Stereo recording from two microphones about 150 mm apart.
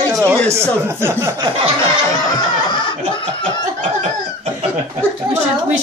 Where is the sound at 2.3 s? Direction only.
30° left (ahead or behind).